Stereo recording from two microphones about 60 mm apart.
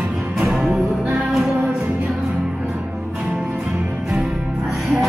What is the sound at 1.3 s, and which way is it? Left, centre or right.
Music, centre.